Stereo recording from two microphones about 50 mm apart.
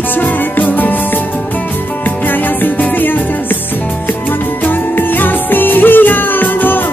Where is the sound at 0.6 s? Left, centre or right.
Left.